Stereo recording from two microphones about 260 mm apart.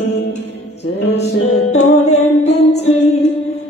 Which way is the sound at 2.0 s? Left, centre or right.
Left.